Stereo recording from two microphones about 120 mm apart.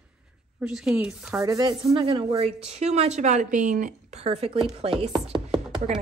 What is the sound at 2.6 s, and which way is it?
A woman's voice, 60° right (ahead or behind).